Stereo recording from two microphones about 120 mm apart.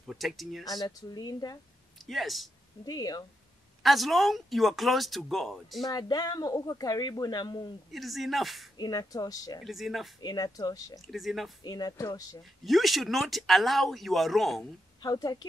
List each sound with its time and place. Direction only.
0.0 s speech: centre (ahead or behind)
0.7 s speech: 35° left (ahead or behind)
2.0 s speech: centre (ahead or behind)
2.8 s speech: 35° left (ahead or behind)
3.8 s speech: centre (ahead or behind)
5.9 s speech: 35° left (ahead or behind)
7.9 s speech: centre (ahead or behind)
8.7 s speech: 35° left (ahead or behind)
9.7 s speech: centre (ahead or behind)
10.2 s speech: 35° left (ahead or behind)
11.1 s speech: centre (ahead or behind)
11.6 s speech: 35° left (ahead or behind)
12.6 s speech: centre (ahead or behind)
15.0 s a woman's voice: 30° left (ahead or behind)